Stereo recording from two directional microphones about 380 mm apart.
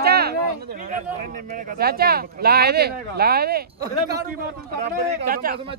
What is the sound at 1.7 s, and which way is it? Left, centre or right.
Speech, right.